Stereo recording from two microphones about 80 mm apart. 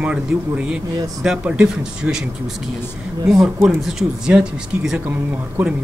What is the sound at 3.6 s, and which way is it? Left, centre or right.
A man's voice, centre.